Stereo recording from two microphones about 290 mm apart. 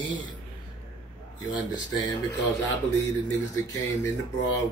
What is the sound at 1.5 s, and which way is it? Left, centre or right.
Speech, centre.